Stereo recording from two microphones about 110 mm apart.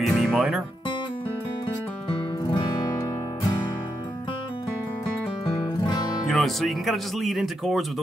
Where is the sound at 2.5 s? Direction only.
40° left (ahead or behind).